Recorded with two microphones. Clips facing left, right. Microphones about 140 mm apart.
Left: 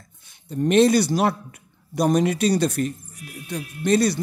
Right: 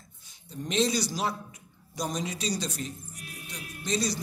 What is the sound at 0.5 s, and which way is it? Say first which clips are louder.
A man's voice: left 11 dB; 60° left (ahead or behind).